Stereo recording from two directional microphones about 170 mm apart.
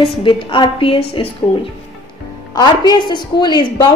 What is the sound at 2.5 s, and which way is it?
A woman's voice, 25° left (ahead or behind).